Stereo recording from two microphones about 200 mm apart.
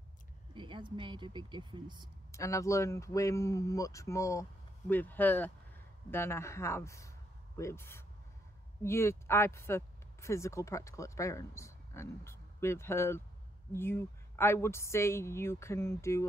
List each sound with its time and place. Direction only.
0.6 s speech: 25° right (ahead or behind)
2.3 s speech: 15° left (ahead or behind)